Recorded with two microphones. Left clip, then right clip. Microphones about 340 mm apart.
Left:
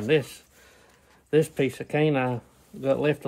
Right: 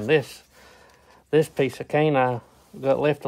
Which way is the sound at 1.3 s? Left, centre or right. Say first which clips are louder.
Right 2 dB; centre.